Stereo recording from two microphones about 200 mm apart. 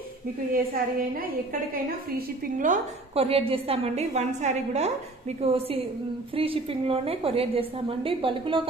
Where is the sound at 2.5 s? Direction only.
40° right (ahead or behind).